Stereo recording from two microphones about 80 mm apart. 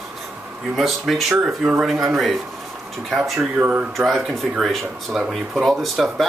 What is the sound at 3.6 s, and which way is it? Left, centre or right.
Speech, right.